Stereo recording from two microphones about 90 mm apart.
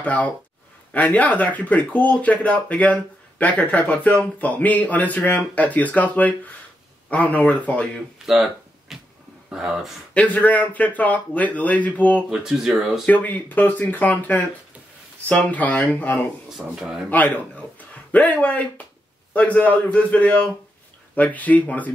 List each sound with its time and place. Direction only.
0.0 s speech: 15° left (ahead or behind)
8.3 s a sound: centre (ahead or behind)
9.5 s speech: 5° right (ahead or behind)
10.1 s speech: 15° left (ahead or behind)
12.3 s speech: 5° right (ahead or behind)
13.0 s speech: 15° left (ahead or behind)
16.5 s speech: 5° right (ahead or behind)
17.1 s speech: 20° left (ahead or behind)